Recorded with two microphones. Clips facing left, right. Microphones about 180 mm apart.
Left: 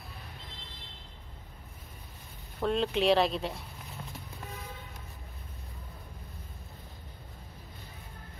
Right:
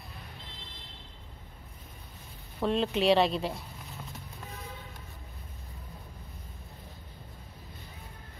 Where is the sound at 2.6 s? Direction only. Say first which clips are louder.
Right 1 dB; centre (ahead or behind).